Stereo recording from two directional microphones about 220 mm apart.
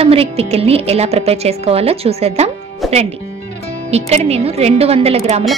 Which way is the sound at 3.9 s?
30° right (ahead or behind).